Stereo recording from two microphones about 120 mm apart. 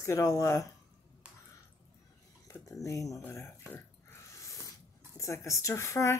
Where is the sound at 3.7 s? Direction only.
20° left (ahead or behind).